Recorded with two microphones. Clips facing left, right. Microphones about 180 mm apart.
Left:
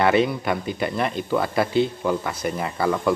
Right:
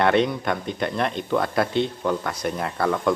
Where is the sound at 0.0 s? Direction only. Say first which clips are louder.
Left 1 dB; 5° left (ahead or behind).